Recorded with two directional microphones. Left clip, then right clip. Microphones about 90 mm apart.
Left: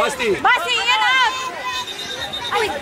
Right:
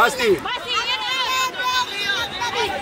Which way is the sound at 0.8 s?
35° left (ahead or behind).